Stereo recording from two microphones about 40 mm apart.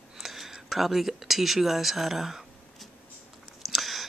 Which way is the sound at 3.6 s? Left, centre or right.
Centre.